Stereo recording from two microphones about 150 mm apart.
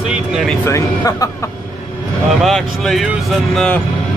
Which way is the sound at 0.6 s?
20° left (ahead or behind).